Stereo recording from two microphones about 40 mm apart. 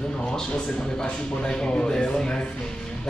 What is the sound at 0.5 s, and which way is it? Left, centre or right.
Speech, left.